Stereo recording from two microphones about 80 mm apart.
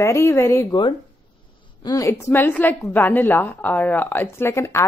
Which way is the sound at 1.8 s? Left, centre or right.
Left.